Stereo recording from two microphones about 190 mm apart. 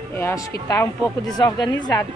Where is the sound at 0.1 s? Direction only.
10° left (ahead or behind).